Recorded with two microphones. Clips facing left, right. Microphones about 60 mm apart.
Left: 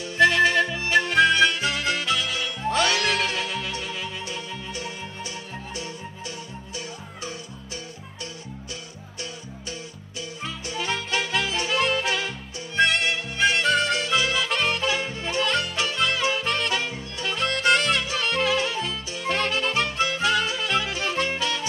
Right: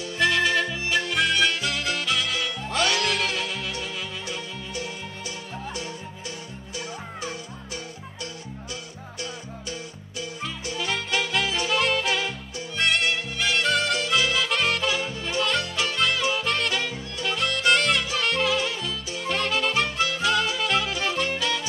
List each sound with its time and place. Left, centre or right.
0.0 s music: left
10.4 s music: left